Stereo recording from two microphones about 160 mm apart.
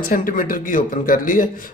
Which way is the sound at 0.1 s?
60° left (ahead or behind).